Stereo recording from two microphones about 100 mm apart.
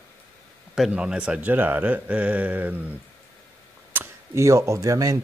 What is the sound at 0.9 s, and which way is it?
Speech, 10° right (ahead or behind).